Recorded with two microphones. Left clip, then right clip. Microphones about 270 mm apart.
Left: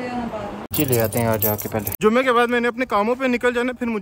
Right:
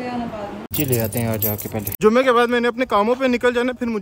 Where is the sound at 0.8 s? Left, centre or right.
Centre.